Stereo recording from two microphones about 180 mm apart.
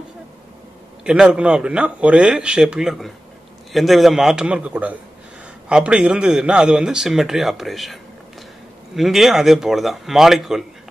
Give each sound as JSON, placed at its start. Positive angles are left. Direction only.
{"t": 1.0, "sound": "a man's voice", "side_deg": -5}